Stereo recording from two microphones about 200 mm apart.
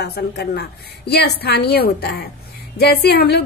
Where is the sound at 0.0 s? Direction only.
55° left (ahead or behind).